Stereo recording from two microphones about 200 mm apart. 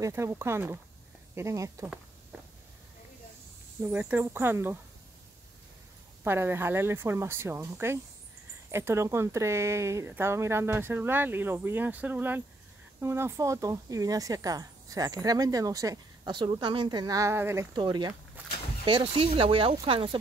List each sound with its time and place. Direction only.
0.0 s speech: 15° right (ahead or behind)
2.3 s a sound: 5° right (ahead or behind)
3.8 s speech: 10° right (ahead or behind)
6.2 s speech: 10° right (ahead or behind); by 20.2 s 25° right (ahead or behind)